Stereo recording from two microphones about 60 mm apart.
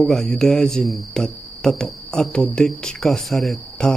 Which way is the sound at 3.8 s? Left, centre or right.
Centre.